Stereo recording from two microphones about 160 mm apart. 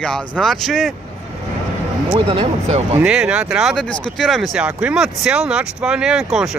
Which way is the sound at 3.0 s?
5° right (ahead or behind).